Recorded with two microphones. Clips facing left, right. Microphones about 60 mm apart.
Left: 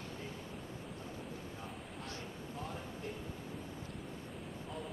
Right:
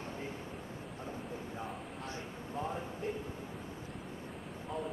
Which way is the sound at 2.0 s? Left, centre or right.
Right.